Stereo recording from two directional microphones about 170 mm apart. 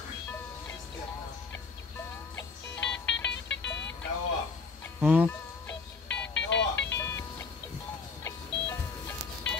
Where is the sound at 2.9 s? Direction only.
90° left.